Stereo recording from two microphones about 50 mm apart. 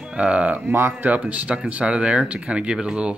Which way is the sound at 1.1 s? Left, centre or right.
Right.